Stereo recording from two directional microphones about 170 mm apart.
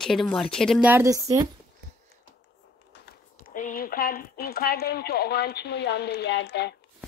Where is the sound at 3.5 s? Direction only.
50° left (ahead or behind); by 6.7 s 85° left.